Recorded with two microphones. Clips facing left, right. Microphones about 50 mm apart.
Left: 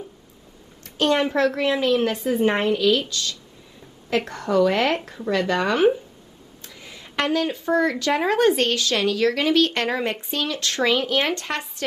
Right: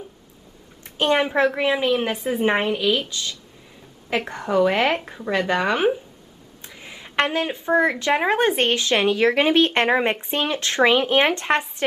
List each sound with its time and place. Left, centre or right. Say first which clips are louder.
0.8 s speech: even; right